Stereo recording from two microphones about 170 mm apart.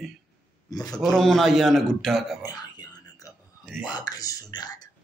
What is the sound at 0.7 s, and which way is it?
Speech, 20° left (ahead or behind).